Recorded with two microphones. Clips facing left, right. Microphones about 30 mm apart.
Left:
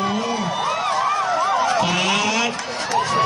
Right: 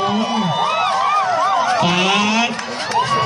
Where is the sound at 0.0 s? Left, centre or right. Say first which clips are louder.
Right 4 dB; right.